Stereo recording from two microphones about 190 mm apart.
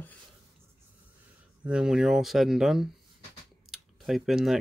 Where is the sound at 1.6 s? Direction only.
5° right (ahead or behind).